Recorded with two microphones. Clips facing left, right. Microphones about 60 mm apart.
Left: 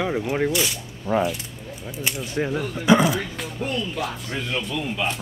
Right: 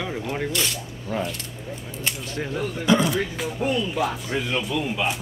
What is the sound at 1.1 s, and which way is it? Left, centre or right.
Speech, left.